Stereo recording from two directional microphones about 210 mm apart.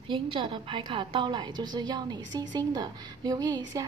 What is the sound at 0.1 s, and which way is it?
A woman's voice, 20° right (ahead or behind).